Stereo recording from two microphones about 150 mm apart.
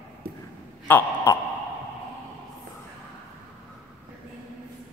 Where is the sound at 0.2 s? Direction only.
90° right.